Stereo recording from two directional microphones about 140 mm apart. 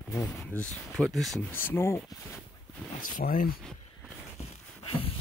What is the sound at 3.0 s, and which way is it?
Speech, 80° left.